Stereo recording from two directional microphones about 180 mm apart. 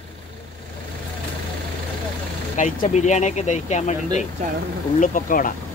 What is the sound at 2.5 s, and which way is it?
Speech, 40° left (ahead or behind).